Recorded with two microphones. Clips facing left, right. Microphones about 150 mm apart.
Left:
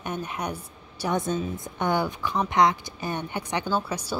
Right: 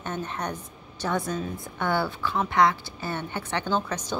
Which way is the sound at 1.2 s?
20° left (ahead or behind).